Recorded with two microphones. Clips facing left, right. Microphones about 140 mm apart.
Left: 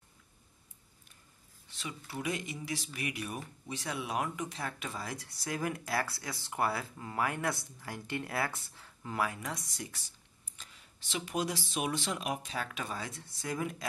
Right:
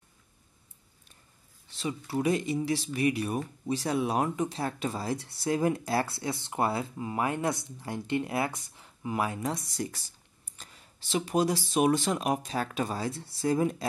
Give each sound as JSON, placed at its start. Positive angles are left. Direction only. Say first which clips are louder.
{"t": 1.8, "sound": "speech", "louder": "right 10 dB", "side_deg": -30}